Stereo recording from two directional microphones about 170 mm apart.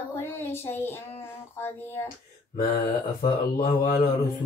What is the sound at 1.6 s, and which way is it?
Child singing, 15° left (ahead or behind).